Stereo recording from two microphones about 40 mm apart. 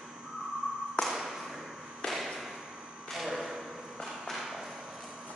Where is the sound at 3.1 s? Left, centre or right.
Centre.